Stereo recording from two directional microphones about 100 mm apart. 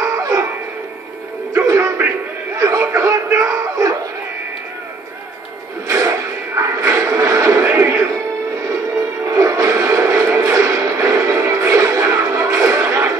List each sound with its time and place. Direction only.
0.0 s bow-wow: 35° right (ahead or behind)
1.5 s music: 30° right (ahead or behind)
2.6 s chuckle: 30° right (ahead or behind)
5.9 s a sound: 30° right (ahead or behind)
9.2 s music: 35° right (ahead or behind)
12.6 s a sound: 25° right (ahead or behind)